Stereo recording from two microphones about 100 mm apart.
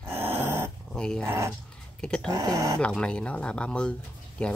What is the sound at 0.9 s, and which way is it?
Speech, 5° left (ahead or behind).